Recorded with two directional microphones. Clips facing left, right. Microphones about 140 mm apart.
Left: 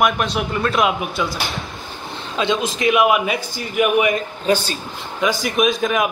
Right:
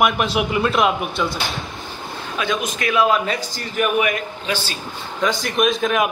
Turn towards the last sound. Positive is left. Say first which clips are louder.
# even
turn(degrees=0)  # may be behind; listen again after turning